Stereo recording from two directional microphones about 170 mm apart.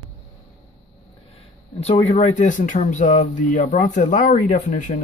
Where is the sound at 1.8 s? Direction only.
40° left (ahead or behind).